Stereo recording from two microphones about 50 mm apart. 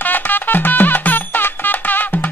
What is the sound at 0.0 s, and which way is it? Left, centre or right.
Music, left.